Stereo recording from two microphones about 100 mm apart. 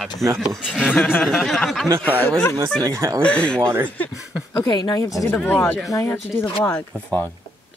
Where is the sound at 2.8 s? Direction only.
30° right (ahead or behind).